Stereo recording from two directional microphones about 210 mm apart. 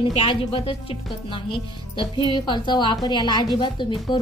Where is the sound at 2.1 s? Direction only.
20° left (ahead or behind).